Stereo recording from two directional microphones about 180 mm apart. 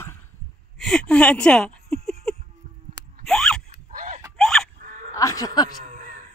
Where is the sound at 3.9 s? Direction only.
50° right (ahead or behind).